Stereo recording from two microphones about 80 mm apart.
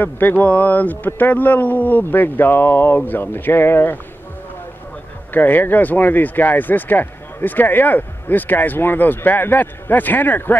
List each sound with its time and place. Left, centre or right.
0.0 s speech: left
5.3 s speech: left